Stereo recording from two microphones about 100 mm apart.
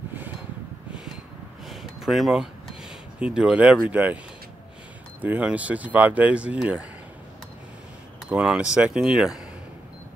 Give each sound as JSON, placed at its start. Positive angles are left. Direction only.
{"t": 1.7, "sound": "a sound", "side_deg": 0}
{"t": 2.8, "sound": "speech", "side_deg": -10}
{"t": 5.2, "sound": "speech", "side_deg": -15}
{"t": 8.3, "sound": "speech", "side_deg": -10}